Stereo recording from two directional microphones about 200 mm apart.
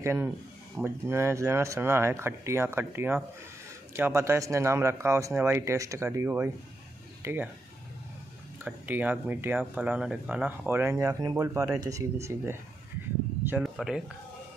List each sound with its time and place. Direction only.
0.0 s speech: 10° right (ahead or behind)
8.6 s speech: 10° right (ahead or behind)